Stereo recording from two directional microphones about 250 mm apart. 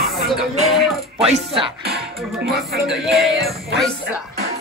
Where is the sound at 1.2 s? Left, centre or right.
Right.